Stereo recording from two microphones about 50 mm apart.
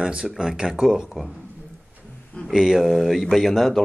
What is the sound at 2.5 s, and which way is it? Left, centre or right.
Speech, centre.